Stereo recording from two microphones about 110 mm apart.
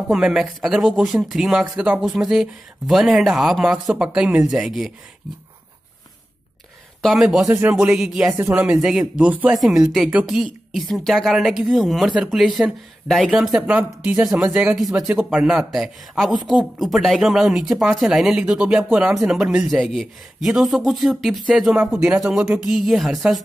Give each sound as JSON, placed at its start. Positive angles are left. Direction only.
{"t": 0.1, "sound": "speech", "side_deg": -5}
{"t": 7.0, "sound": "speech", "side_deg": 0}
{"t": 8.4, "sound": "speech", "side_deg": -20}
{"t": 14.9, "sound": "speech", "side_deg": -25}
{"t": 15.2, "sound": "speech", "side_deg": -10}